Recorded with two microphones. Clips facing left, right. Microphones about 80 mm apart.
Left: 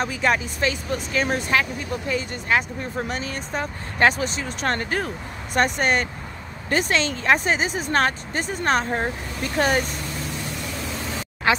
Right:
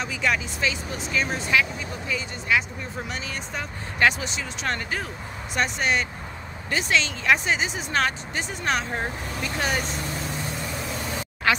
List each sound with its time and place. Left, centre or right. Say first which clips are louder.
0.0 s speech: left 4 dB; left
11.0 s vehicle: left 1 dB; centre
11.5 s speech: left 2 dB; left